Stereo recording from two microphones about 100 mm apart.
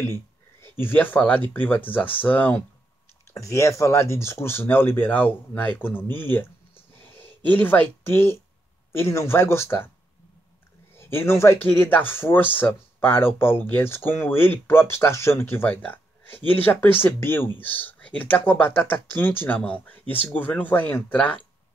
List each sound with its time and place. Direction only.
0.7 s speech: 20° left (ahead or behind)
3.3 s speech: 30° left (ahead or behind)
11.0 s speech: 25° left (ahead or behind)